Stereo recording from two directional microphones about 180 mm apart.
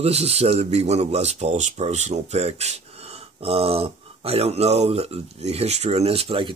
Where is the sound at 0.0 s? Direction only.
35° right (ahead or behind).